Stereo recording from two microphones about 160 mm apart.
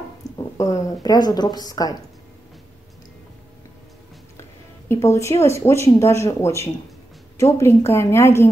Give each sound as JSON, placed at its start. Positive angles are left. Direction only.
{"t": 0.2, "sound": "speech", "side_deg": 20}
{"t": 4.4, "sound": "a woman's voice", "side_deg": 15}